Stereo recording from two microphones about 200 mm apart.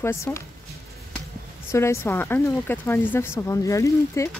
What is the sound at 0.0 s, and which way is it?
Speech, 15° left (ahead or behind).